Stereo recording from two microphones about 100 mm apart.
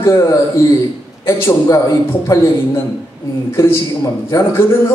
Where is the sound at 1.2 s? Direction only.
25° left (ahead or behind).